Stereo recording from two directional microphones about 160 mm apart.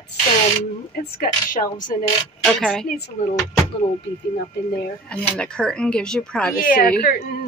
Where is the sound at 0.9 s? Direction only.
60° left (ahead or behind).